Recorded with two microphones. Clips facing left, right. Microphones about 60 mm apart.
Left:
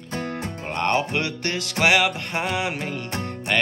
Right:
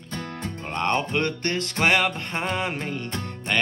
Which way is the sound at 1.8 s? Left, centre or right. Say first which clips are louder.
Left 3 dB; centre.